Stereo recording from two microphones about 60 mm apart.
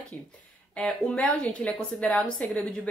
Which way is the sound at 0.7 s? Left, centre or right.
Centre.